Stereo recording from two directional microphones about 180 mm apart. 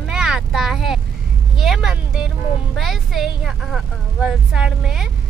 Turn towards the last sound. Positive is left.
turn(degrees=-5)  # may be behind; listen again after turning